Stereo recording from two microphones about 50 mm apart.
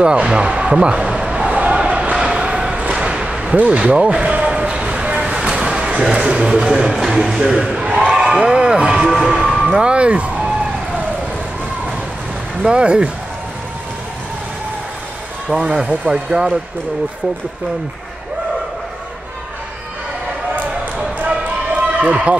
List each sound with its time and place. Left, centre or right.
0.0 s speech: centre
1.5 s crowd: right
2.2 s a sound: centre
2.8 s thump: right
3.5 s speech: right
4.5 s a sound: centre
7.5 s a sound: right
8.1 s a sound: centre
9.3 s music: centre
9.8 s speech: right
12.6 s speech: centre
15.5 s speech: centre
21.7 s basketball bounce: right